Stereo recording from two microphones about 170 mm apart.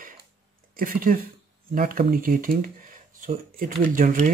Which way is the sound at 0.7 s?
55° right (ahead or behind).